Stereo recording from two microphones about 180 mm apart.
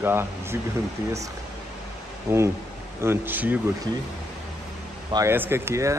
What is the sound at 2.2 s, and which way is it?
Speech, 15° right (ahead or behind).